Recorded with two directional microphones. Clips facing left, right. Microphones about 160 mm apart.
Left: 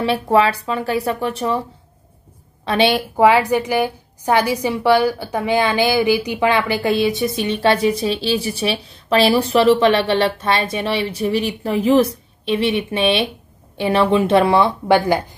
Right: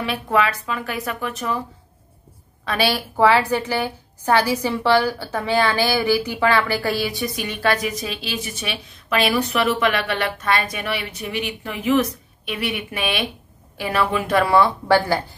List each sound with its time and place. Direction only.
0.0 s speech: 30° left (ahead or behind)
2.6 s a woman's voice: 25° left (ahead or behind)